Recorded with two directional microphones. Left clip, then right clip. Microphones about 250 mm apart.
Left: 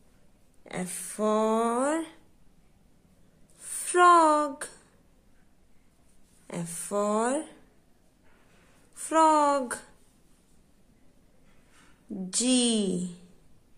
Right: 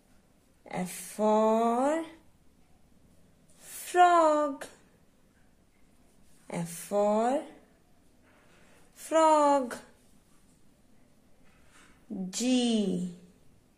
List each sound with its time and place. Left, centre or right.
0.7 s speech: centre
3.5 s a sound: centre
6.4 s speech: centre
8.9 s speech: centre
12.3 s speech: centre